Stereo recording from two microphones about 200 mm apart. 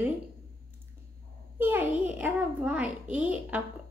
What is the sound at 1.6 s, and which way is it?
A child's voice, 10° right (ahead or behind).